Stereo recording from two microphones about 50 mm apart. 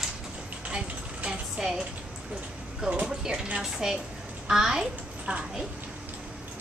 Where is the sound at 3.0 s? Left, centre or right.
Centre.